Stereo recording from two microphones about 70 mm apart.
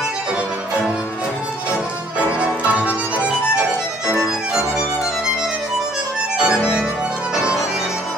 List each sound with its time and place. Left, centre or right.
2.1 s music: centre
4.2 s music: centre
6.3 s music: centre